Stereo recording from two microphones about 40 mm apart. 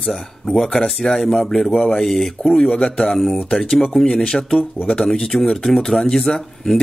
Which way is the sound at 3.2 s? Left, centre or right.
Centre.